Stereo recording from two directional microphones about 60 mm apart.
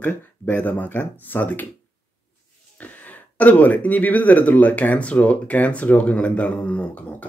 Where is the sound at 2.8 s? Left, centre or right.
Left.